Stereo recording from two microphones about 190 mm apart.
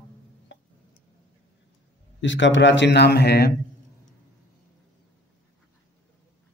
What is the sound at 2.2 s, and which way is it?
Speech, 75° left (ahead or behind).